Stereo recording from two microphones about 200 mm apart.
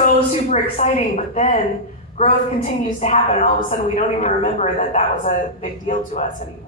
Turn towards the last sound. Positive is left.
turn(degrees=40)  # may be behind; listen again after turning